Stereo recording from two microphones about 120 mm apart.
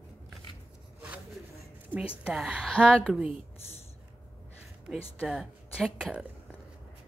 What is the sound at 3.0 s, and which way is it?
Speech, 10° right (ahead or behind).